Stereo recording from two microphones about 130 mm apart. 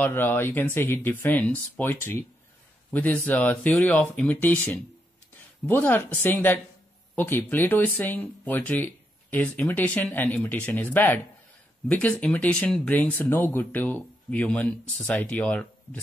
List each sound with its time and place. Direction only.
0.0 s speech: 15° left (ahead or behind)